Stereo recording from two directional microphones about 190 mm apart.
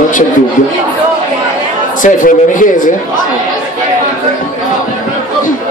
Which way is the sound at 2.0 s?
45° left (ahead or behind).